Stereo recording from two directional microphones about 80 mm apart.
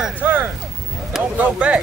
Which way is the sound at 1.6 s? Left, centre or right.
Centre.